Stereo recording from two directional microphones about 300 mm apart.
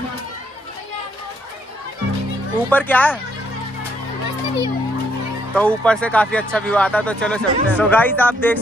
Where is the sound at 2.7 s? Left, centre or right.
Centre.